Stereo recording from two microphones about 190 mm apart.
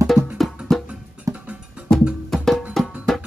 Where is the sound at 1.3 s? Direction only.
15° right (ahead or behind).